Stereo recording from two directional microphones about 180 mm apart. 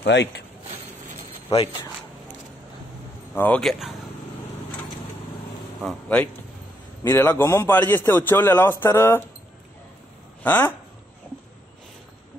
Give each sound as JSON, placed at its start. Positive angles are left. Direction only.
{"t": 0.0, "sound": "speech", "side_deg": 75}
{"t": 3.3, "sound": "a man's voice", "side_deg": 10}
{"t": 5.9, "sound": "a man's voice", "side_deg": 10}
{"t": 10.4, "sound": "a man's voice", "side_deg": 10}